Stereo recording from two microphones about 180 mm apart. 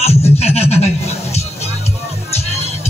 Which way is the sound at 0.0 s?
35° left (ahead or behind).